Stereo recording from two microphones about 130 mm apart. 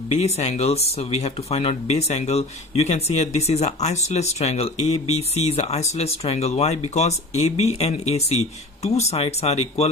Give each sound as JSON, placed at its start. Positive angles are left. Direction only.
{"t": 0.1, "sound": "speech", "side_deg": 55}